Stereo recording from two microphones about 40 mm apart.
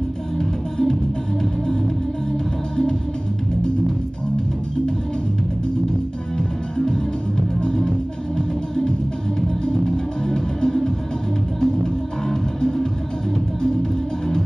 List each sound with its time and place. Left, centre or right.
0.4 s music: centre
6.3 s music: centre
10.2 s music: centre